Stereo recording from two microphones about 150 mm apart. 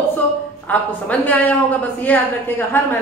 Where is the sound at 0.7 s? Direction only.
10° left (ahead or behind).